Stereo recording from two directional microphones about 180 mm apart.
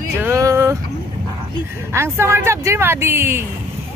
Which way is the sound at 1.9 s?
15° right (ahead or behind).